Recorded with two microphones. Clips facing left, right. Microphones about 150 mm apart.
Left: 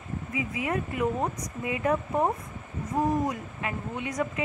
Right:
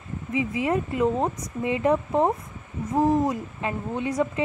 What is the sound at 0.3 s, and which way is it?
A woman's voice, 25° right (ahead or behind).